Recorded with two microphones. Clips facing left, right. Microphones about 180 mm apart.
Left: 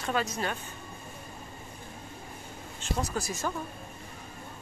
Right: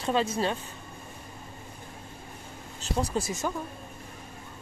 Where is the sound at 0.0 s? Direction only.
30° right (ahead or behind).